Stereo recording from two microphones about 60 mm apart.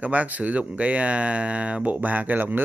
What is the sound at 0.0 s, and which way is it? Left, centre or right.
Speech, right.